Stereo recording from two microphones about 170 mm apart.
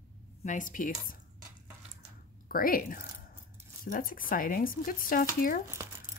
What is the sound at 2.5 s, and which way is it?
A woman's voice, 55° left (ahead or behind).